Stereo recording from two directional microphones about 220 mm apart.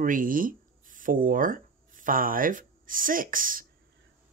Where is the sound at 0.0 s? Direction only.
40° right (ahead or behind).